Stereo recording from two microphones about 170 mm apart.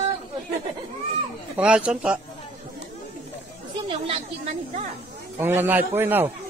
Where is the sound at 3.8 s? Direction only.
30° right (ahead or behind).